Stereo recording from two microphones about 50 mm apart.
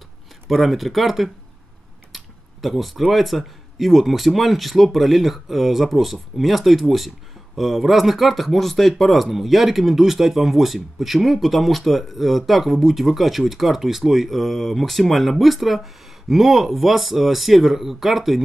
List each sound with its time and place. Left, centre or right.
0.5 s speech: centre